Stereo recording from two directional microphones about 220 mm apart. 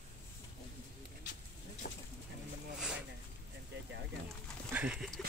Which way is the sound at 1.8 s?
45° left (ahead or behind).